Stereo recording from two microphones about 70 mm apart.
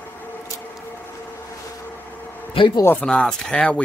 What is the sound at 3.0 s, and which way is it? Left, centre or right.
Speech, centre.